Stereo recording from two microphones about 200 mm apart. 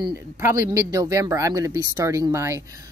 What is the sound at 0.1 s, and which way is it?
Speech, 10° right (ahead or behind).